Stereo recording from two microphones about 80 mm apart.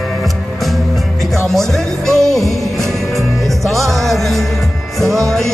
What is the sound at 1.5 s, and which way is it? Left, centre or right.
Music, centre.